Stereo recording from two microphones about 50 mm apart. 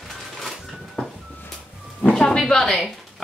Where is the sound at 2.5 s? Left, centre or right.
Centre.